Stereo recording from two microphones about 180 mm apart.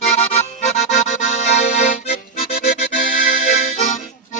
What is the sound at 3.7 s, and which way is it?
Accordion, 40° left (ahead or behind).